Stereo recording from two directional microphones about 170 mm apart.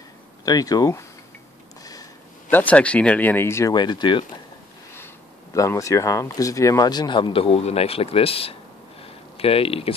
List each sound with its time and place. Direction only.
0.5 s speech: 20° left (ahead or behind)
2.5 s speech: 10° left (ahead or behind); by 4.3 s 30° left (ahead or behind)
4.9 s speech: 15° left (ahead or behind); by 8.5 s 35° left (ahead or behind)
9.0 s a sound: 35° left (ahead or behind)